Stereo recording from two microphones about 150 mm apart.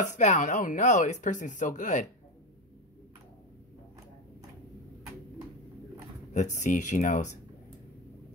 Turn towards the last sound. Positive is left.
turn(degrees=50)  # may be behind; listen again after turning